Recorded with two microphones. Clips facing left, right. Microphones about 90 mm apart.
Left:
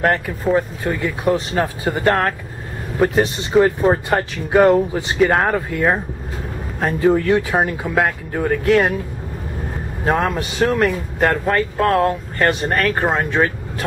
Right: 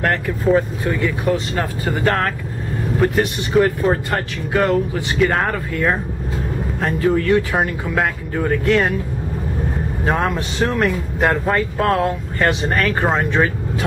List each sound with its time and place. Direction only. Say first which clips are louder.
0.0 s speech: even; 10° left (ahead or behind)
0.8 s speech: even; 20° left (ahead or behind)
7.0 s speech: left 1 dB; 20° left (ahead or behind)
10.0 s speech: left 2 dB; 5° left (ahead or behind)